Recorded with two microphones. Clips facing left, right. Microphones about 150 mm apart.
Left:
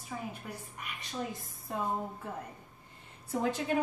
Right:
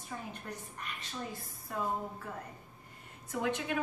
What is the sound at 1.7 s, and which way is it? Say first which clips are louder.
Speech: left 2 dB; 25° left (ahead or behind).